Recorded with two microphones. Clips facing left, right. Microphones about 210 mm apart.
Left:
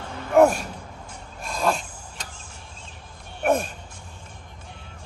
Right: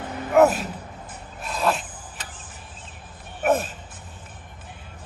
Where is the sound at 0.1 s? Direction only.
5° right (ahead or behind).